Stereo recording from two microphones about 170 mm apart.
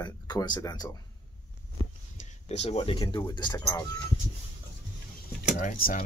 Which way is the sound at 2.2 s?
40° left (ahead or behind).